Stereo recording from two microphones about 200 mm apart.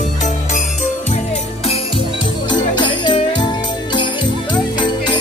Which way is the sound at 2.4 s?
20° left (ahead or behind).